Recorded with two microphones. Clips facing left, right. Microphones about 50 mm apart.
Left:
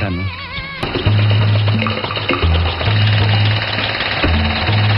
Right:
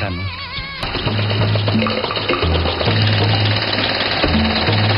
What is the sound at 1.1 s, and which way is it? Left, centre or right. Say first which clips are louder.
Music: left 1 dB; centre.